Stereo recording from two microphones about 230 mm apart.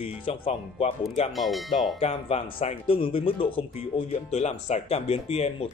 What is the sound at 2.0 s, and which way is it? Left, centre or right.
Speech, left.